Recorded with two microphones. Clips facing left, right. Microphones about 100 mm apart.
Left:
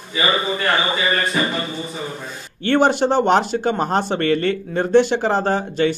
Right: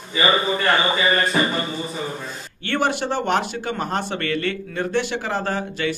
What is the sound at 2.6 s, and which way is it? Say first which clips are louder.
Speech: left 6 dB; 35° left (ahead or behind).